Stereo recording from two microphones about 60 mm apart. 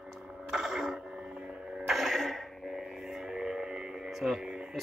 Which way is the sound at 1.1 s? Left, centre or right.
Centre.